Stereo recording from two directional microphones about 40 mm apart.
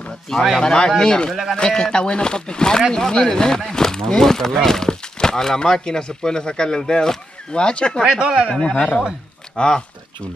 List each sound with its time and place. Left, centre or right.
0.6 s speech: centre
8.1 s speech: right
8.5 s speech: left